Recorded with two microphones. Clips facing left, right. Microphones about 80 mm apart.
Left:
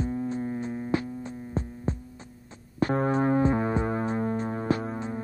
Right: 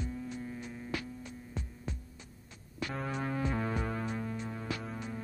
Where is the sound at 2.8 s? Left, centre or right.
Left.